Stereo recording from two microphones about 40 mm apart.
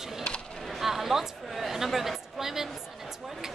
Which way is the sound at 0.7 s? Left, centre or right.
Centre.